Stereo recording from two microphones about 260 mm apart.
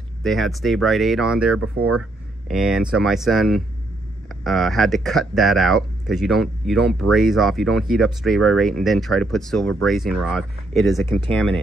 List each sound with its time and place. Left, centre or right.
0.2 s speech: centre
1.8 s speech: right
2.4 s speech: centre